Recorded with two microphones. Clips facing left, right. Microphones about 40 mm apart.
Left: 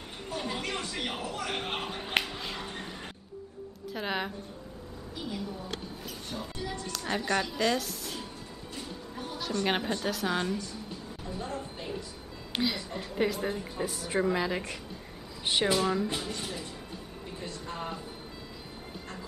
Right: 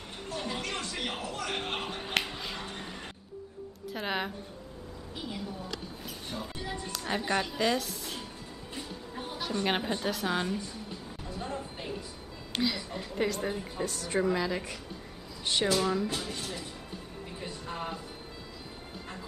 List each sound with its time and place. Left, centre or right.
0.3 s speech: centre
2.2 s music: centre
3.9 s a woman's voice: centre
6.0 s a woman's voice: centre
6.6 s a woman's voice: centre
6.9 s a woman's voice: centre
8.7 s music: centre
10.0 s a woman's voice: centre
12.5 s a woman's voice: centre
17.4 s a sound: centre